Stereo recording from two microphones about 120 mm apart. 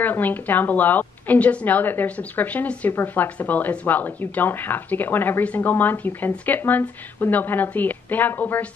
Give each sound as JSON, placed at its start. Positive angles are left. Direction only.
{"t": 0.0, "sound": "a woman's voice", "side_deg": 15}